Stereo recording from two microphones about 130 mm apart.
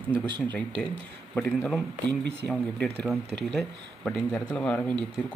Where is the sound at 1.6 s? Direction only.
5° left (ahead or behind).